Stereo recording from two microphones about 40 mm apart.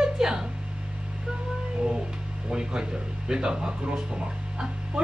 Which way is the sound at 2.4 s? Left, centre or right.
Right.